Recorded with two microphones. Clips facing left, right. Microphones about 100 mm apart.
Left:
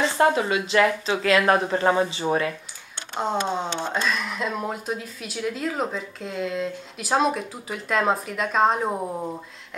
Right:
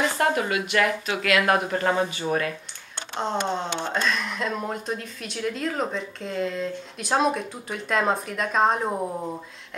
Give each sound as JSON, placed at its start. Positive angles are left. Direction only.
{"t": 0.0, "sound": "a woman's voice", "side_deg": 25}
{"t": 3.2, "sound": "speech", "side_deg": 5}